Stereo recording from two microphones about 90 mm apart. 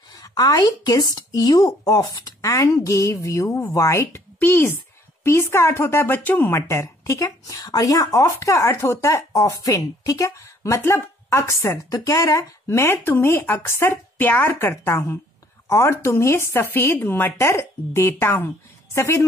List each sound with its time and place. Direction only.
0.1 s speech: 45° left (ahead or behind)
2.4 s speech: 35° left (ahead or behind)
6.5 s speech: 30° left (ahead or behind)
11.9 s speech: 40° left (ahead or behind)